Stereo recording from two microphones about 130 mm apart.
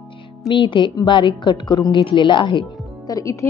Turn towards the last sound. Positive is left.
turn(degrees=30)  # may be behind; listen again after turning